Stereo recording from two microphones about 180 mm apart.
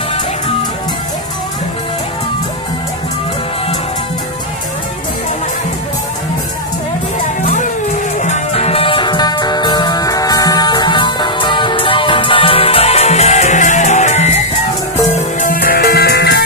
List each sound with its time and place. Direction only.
8.2 s music: 35° left (ahead or behind)
15.4 s music: 55° left (ahead or behind)